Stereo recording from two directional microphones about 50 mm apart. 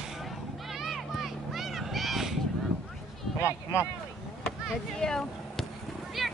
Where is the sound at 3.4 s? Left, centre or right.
Left.